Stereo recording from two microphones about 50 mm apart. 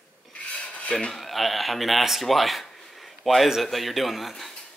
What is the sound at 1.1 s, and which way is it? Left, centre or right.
A man's voice, centre.